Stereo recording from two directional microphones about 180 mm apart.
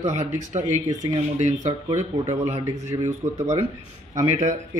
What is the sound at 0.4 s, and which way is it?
Speech, 45° right (ahead or behind).